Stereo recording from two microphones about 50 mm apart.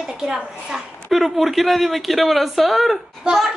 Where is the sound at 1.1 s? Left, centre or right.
Centre.